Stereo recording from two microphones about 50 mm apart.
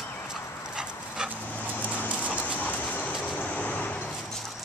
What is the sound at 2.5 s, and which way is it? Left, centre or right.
Vehicle, left.